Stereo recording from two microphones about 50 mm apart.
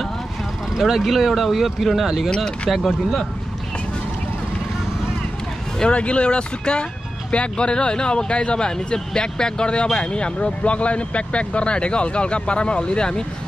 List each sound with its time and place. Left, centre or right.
0.7 s speech: centre
2.2 s speech: centre
5.8 s speech: left